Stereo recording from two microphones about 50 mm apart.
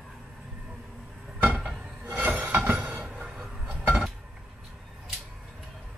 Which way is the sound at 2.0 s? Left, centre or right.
Right.